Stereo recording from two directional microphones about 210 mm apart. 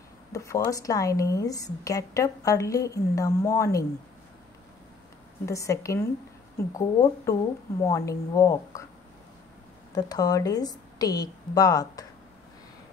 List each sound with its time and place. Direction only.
0.3 s a woman's voice: 15° left (ahead or behind)
5.4 s a woman's voice: 15° left (ahead or behind)
9.9 s a woman's voice: 20° left (ahead or behind)